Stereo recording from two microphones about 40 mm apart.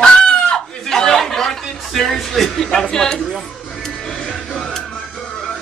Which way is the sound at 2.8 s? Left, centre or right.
Centre.